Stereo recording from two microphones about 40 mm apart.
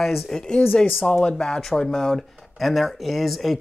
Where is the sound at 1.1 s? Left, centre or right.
Left.